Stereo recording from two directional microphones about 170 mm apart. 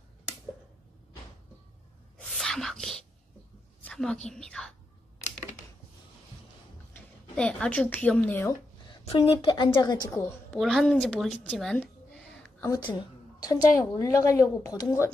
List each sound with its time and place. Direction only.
2.1 s whispering: centre (ahead or behind)
3.8 s a woman's voice: 5° left (ahead or behind)
7.3 s a woman's voice: 5° left (ahead or behind)
9.0 s a woman's voice: 35° left (ahead or behind); by 10.2 s 20° left (ahead or behind)
10.5 s a woman's voice: centre (ahead or behind)
12.5 s a woman's voice: 20° left (ahead or behind)